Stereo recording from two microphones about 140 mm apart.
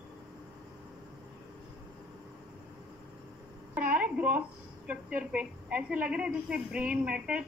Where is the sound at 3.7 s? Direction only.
10° right (ahead or behind).